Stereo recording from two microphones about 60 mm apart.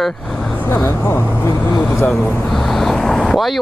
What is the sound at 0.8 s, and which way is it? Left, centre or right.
Speech, left.